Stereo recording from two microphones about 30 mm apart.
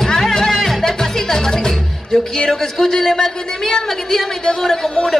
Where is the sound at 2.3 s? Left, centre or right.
Centre.